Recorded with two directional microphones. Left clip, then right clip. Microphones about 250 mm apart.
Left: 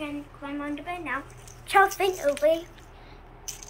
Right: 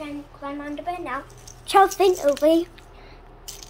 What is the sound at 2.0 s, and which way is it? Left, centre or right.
Speech, right.